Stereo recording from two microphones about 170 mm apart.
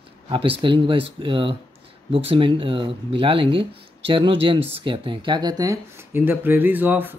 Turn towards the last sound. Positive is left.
turn(degrees=-10)  # may be behind; listen again after turning